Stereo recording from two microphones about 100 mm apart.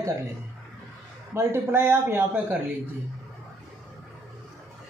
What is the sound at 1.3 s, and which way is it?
A man's voice, 25° right (ahead or behind).